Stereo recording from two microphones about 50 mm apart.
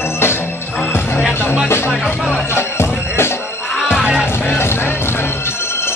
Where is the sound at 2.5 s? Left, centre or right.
Left.